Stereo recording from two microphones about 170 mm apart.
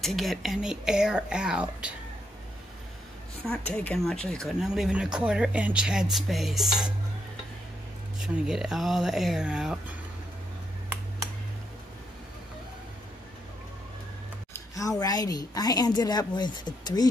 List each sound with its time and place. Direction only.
0.0 s speech: centre (ahead or behind)
3.7 s speech: 5° left (ahead or behind)
8.2 s speech: 5° right (ahead or behind)
14.5 s a woman's voice: 20° left (ahead or behind)